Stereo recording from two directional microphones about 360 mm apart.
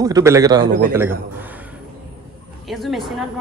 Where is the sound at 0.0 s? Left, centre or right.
Centre.